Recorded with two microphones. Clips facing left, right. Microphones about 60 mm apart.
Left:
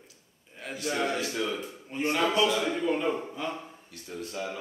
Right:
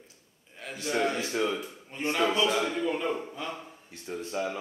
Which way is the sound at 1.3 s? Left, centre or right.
Right.